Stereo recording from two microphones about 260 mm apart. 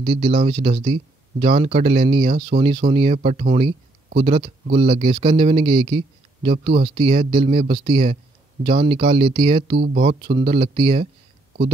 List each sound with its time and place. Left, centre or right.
0.0 s speech: right